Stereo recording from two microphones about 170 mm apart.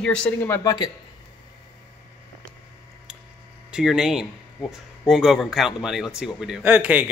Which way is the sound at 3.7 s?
5° right (ahead or behind).